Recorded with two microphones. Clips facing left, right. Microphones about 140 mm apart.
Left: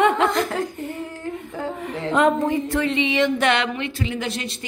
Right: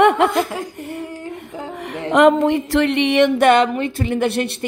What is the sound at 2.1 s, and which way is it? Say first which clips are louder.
Speech: right 6 dB; 80° right.